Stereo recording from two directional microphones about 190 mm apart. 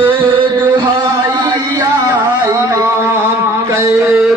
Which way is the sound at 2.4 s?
15° right (ahead or behind).